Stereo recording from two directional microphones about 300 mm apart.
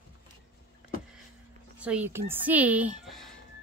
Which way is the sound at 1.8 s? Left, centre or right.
Centre.